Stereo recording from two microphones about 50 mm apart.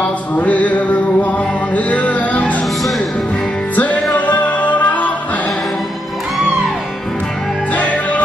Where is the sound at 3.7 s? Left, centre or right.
Left.